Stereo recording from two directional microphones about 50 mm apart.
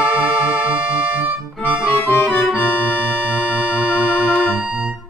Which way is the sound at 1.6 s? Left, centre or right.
Left.